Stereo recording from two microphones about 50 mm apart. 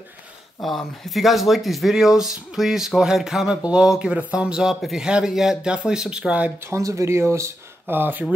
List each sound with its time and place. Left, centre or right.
0.6 s speech: centre
4.0 s speech: right
6.6 s speech: right
7.9 s speech: right